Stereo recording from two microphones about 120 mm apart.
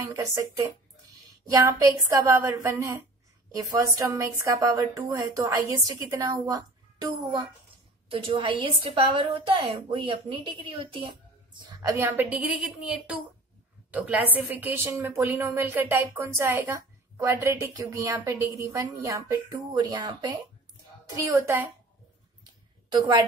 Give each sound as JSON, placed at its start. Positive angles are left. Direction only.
{"t": 0.0, "sound": "a woman's voice", "side_deg": -25}
{"t": 8.1, "sound": "a woman's voice", "side_deg": -50}
{"t": 11.8, "sound": "a woman's voice", "side_deg": -25}
{"t": 22.8, "sound": "speech", "side_deg": -35}